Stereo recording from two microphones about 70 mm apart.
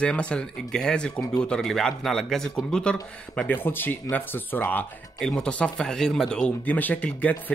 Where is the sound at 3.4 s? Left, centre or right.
Left.